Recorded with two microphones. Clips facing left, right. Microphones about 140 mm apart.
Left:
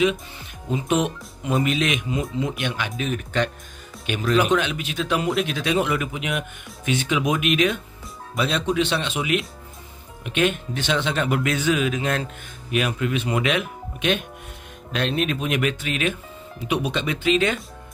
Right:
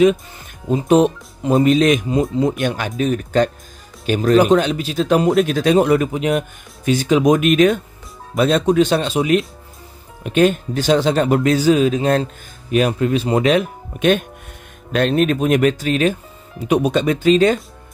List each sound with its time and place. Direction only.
0.7 s speech: 35° right (ahead or behind)